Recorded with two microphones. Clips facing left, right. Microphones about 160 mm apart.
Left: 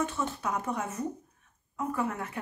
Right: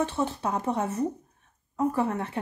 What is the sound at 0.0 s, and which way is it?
Speech, 30° right (ahead or behind).